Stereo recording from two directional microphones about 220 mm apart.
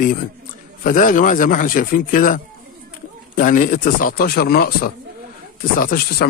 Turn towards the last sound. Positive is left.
turn(degrees=45)  # may be behind; listen again after turning